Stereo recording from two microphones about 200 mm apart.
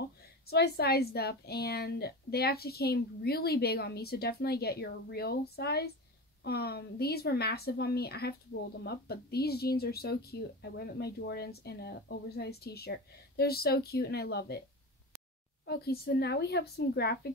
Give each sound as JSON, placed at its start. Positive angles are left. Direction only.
{"t": 0.5, "sound": "a woman's voice", "side_deg": 50}
{"t": 15.6, "sound": "a woman's voice", "side_deg": 50}